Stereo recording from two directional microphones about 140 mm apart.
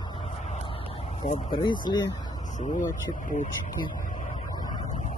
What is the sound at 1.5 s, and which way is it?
Speech, 35° left (ahead or behind).